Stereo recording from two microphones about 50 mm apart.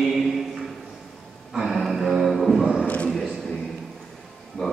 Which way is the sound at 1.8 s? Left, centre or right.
Centre.